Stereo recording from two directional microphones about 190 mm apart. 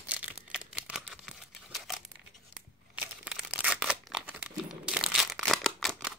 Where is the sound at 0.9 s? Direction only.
Centre (ahead or behind).